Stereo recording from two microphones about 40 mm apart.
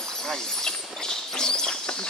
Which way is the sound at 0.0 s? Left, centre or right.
Centre.